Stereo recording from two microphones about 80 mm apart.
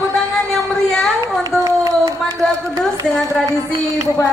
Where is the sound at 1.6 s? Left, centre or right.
Right.